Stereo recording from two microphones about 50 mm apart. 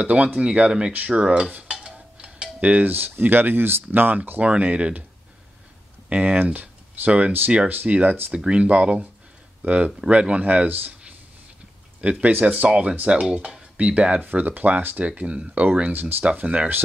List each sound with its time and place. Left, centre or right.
0.0 s speech: right
1.7 s cutlery: centre
2.8 s speech: right
4.4 s speech: right
6.0 s speech: right
6.4 s speech: right
8.3 s speech: right
12.0 s speech: right
14.2 s speech: right
15.0 s speech: right
15.9 s speech: right
16.3 s speech: right